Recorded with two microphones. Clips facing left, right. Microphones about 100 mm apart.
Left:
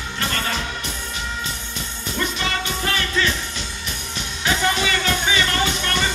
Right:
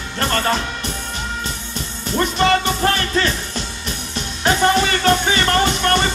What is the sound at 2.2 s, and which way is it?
Music, 45° right (ahead or behind).